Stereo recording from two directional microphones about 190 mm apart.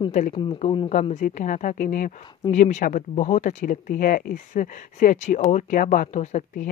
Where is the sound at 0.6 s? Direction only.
25° left (ahead or behind).